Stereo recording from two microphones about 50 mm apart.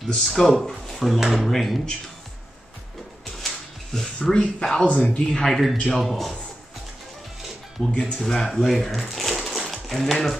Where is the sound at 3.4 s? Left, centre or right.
Centre.